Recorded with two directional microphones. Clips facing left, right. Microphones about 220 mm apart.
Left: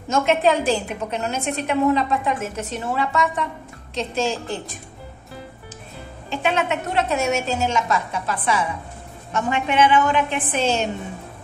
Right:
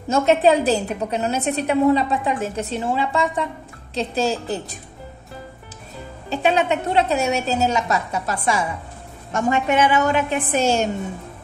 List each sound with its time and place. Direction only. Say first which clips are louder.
0.1 s a woman's voice: right 3 dB; 35° right (ahead or behind)
6.3 s a woman's voice: right 3 dB; 35° right (ahead or behind)